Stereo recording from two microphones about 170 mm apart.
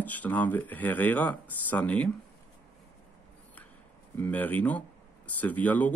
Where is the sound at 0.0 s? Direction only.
10° left (ahead or behind).